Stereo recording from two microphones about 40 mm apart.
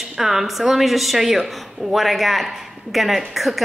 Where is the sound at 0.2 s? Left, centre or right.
Centre.